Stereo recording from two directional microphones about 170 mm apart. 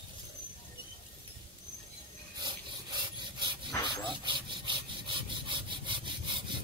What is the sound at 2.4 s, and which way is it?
Rub, 25° right (ahead or behind).